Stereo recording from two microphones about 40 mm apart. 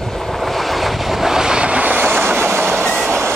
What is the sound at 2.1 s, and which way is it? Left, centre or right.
Train, right.